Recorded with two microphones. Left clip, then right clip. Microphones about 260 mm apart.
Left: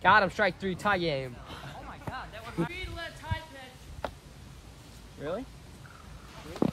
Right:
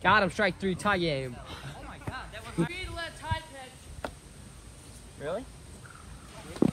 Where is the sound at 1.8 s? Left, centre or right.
Centre.